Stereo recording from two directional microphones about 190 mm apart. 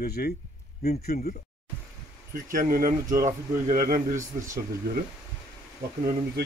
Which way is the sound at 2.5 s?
50° right (ahead or behind).